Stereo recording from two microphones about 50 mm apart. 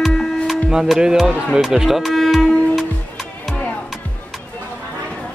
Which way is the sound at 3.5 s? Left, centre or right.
Left.